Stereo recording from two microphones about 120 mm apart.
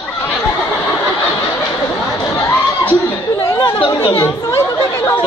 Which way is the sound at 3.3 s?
30° left (ahead or behind).